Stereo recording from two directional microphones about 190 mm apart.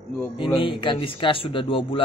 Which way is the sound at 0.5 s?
25° left (ahead or behind).